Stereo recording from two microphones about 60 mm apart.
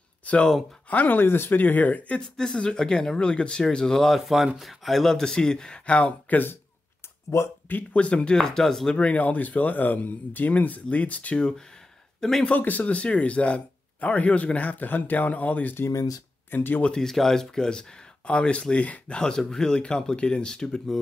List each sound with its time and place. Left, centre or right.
0.8 s speech: left
2.2 s speech: centre
7.2 s speech: left
7.6 s speech: left
8.4 s speech: centre
9.0 s speech: left
12.2 s speech: centre
12.4 s speech: left
15.9 s speech: left
16.4 s speech: left
16.8 s speech: centre